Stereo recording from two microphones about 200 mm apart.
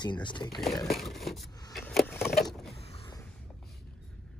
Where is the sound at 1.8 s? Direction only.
5° left (ahead or behind).